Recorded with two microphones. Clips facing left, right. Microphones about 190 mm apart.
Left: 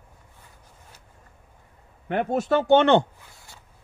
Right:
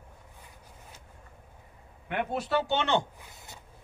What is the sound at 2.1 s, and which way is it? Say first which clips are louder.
Speech: left 7 dB; 45° left (ahead or behind).